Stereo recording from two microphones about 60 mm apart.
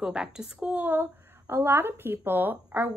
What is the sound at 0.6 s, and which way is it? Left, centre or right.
A woman's voice, right.